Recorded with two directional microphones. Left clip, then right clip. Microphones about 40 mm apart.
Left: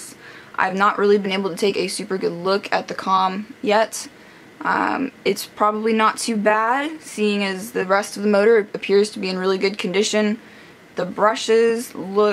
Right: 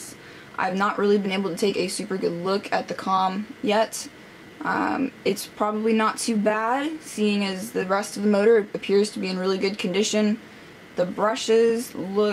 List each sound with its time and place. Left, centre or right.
0.6 s speech: left
2.1 s speech: left
8.5 s speech: left
8.8 s speech: left